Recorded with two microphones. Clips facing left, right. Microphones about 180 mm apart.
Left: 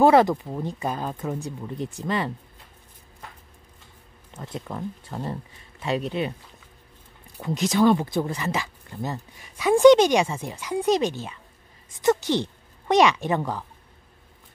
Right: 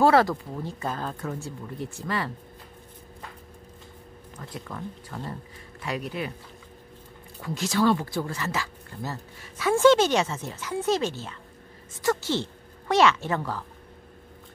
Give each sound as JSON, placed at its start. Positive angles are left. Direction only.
{"t": 0.0, "sound": "speech", "side_deg": 20}
{"t": 4.4, "sound": "speech", "side_deg": 25}
{"t": 7.4, "sound": "speech", "side_deg": 20}